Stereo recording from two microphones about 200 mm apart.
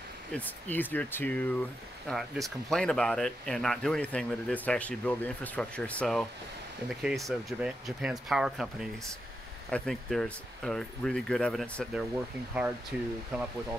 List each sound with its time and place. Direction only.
0.3 s speech: 10° left (ahead or behind)